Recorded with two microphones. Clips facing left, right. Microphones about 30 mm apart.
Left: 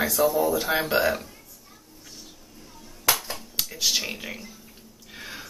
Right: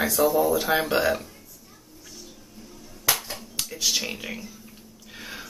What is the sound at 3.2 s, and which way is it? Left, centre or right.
Finger snapping, centre.